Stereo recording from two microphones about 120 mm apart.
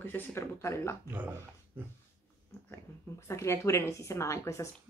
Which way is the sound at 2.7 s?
20° left (ahead or behind).